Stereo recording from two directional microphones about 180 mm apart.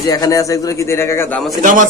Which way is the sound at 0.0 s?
20° left (ahead or behind).